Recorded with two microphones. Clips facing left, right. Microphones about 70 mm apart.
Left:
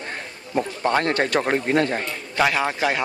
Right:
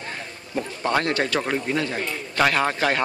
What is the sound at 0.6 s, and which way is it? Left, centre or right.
Speech, left.